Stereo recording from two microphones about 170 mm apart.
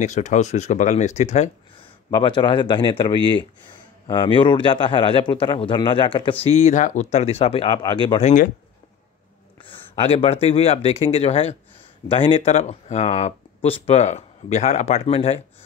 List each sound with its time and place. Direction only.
0.0 s speech: 45° left (ahead or behind)
2.0 s a man's voice: 25° left (ahead or behind)
4.1 s a man's voice: 30° left (ahead or behind)
6.4 s a man's voice: 40° left (ahead or behind); by 8.2 s 25° left (ahead or behind)
8.2 s speech: 45° left (ahead or behind)
9.6 s speech: 30° left (ahead or behind)